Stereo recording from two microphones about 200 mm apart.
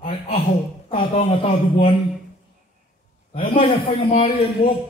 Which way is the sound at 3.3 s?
25° left (ahead or behind).